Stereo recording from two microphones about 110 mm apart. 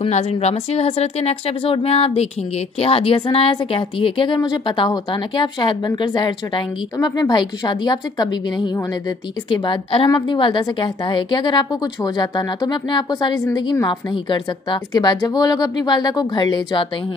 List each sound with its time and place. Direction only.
0.0 s a woman's voice: 75° left (ahead or behind); by 16.8 s 40° left (ahead or behind)